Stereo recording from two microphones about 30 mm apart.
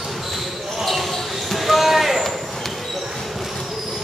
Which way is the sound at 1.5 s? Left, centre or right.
Centre.